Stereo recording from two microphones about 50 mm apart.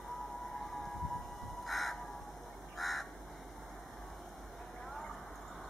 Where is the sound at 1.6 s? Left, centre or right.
Centre.